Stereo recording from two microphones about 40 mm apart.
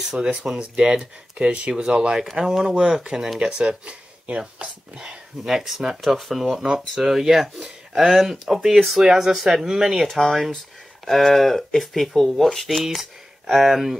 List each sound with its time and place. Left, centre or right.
0.0 s speech: centre
4.9 s speech: centre
10.0 s speech: centre